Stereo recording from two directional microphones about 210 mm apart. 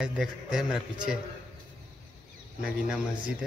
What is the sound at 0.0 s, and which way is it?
Speech, 5° right (ahead or behind).